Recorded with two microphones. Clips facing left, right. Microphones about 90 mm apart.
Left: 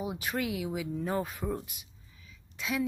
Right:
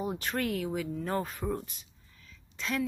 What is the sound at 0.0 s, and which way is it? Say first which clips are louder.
Speech: right 1 dB; 5° left (ahead or behind).